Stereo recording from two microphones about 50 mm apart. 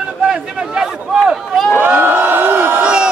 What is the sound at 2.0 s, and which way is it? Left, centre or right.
Speech, right.